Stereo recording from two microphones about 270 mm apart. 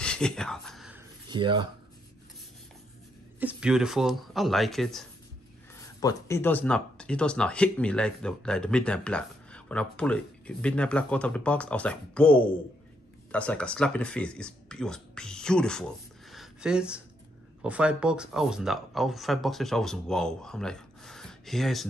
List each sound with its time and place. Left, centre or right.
0.0 s a sound: centre
1.3 s speech: centre
3.3 s speech: centre
5.9 s speech: centre